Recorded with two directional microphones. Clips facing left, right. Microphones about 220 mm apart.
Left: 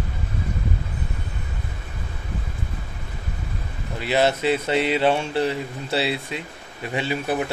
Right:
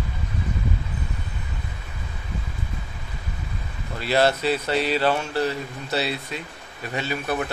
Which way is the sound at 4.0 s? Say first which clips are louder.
Even; 15° left (ahead or behind).